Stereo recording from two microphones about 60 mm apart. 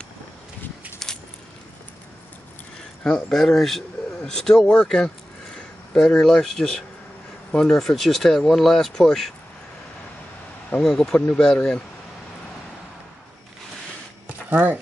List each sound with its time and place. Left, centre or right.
1.0 s keys jangling: centre
3.2 s speech: centre
10.8 s speech: centre
14.5 s speech: right